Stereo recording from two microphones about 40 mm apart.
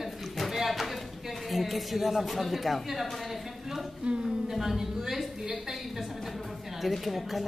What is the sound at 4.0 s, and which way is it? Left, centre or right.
Speech, right.